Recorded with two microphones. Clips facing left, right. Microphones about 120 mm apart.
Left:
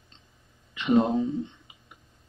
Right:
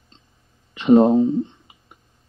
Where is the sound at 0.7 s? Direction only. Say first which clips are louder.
Right 9 dB; 35° right (ahead or behind).